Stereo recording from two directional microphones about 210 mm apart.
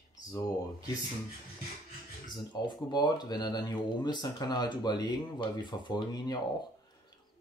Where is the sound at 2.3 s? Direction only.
20° left (ahead or behind).